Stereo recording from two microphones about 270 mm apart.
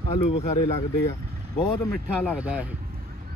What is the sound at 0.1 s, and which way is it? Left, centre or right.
Speech, left.